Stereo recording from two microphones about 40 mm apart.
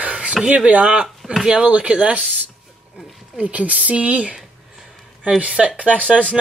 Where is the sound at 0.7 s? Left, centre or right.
Right.